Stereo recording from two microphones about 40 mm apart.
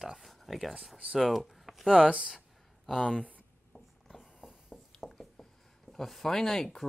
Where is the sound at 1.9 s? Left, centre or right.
Right.